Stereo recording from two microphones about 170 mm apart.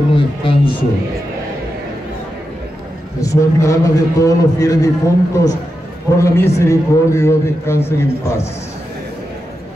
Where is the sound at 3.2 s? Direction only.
20° left (ahead or behind).